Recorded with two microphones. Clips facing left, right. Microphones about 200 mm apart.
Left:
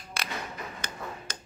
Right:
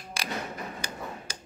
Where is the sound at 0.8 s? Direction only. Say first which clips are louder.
Right 2 dB; 10° right (ahead or behind).